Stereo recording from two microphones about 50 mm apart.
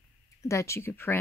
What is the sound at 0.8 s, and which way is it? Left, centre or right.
Speech, left.